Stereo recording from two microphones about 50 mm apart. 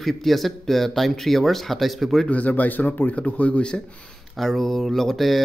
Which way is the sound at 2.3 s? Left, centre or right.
Left.